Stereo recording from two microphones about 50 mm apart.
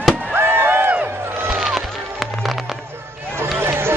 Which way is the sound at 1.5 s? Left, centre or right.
Centre.